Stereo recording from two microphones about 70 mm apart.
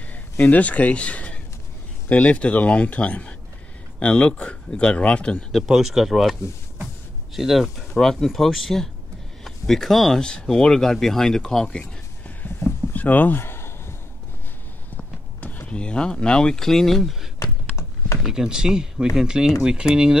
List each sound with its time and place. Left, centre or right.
0.1 s speech: left
5.6 s speech: centre
7.3 s speech: centre
12.4 s a sound: left
15.0 s speech: left; by 17.3 s centre
17.7 s a sound: left
18.2 s speech: centre